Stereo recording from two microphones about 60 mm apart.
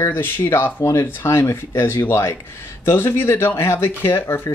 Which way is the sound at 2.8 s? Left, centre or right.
Left.